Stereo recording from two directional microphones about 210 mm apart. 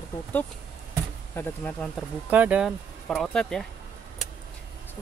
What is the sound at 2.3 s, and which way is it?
Speech, 5° right (ahead or behind).